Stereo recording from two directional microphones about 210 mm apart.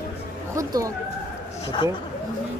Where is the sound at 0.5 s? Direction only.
15° right (ahead or behind).